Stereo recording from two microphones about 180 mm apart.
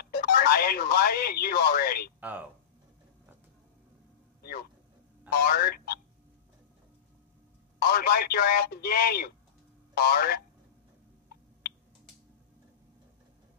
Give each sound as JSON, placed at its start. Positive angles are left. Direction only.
{"t": 0.0, "sound": "speech", "side_deg": 60}
{"t": 2.1, "sound": "speech", "side_deg": -10}
{"t": 5.3, "sound": "speech", "side_deg": 60}
{"t": 7.8, "sound": "speech", "side_deg": 60}